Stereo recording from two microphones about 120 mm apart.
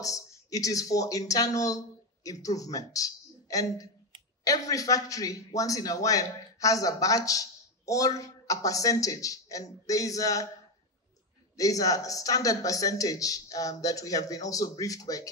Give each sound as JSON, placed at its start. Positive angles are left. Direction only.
{"t": 0.0, "sound": "a man's voice", "side_deg": 30}
{"t": 11.5, "sound": "a man's voice", "side_deg": 30}